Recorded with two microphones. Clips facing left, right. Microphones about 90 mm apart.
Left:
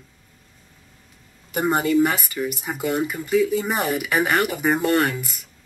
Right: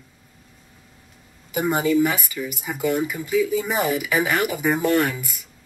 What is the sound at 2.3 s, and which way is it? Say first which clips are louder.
Speech: left 2 dB; centre (ahead or behind).